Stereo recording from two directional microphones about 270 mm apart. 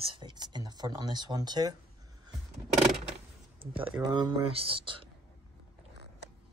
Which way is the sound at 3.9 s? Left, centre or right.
Centre.